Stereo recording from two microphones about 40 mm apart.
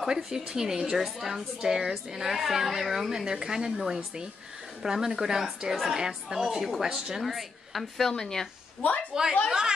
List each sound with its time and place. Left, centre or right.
0.0 s a woman's voice: centre
8.1 s speech: centre
9.1 s a woman's voice: centre